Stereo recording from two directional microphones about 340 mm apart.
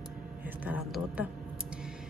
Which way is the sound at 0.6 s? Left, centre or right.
Centre.